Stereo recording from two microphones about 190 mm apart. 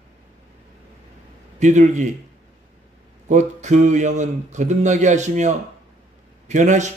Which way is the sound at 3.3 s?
40° right (ahead or behind).